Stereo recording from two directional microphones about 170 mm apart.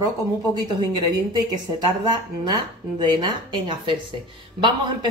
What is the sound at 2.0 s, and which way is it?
Speech, 25° right (ahead or behind).